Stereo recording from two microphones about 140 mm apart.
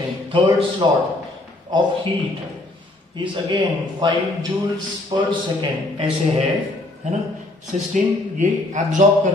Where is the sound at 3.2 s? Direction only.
35° right (ahead or behind).